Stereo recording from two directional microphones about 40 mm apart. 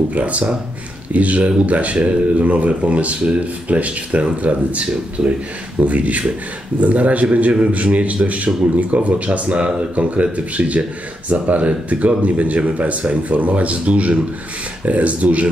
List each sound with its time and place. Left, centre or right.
0.1 s speech: right